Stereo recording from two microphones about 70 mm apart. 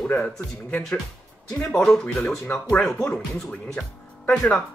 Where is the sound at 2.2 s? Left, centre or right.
Left.